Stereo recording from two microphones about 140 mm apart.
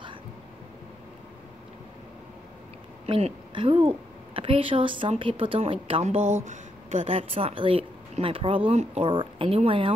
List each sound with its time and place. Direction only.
3.1 s a woman's voice: 45° right (ahead or behind)
7.1 s speech: 45° right (ahead or behind)